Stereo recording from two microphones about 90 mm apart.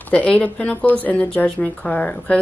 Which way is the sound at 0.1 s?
15° left (ahead or behind).